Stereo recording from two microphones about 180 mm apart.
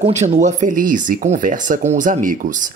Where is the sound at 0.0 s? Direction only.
40° right (ahead or behind).